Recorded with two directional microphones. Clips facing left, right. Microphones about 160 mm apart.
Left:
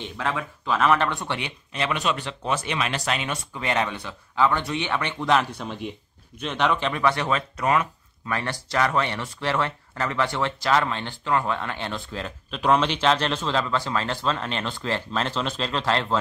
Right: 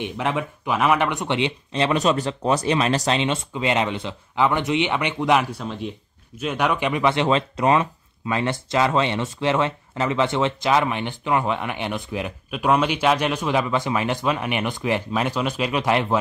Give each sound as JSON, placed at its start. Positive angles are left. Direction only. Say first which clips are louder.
{"t": 0.0, "sound": "speech", "louder": "right 4 dB", "side_deg": -20}